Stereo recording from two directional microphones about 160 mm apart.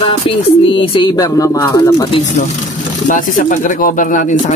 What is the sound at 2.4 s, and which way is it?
Speech, 60° left (ahead or behind).